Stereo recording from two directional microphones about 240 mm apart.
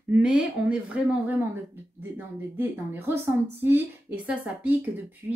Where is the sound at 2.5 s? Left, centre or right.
Centre.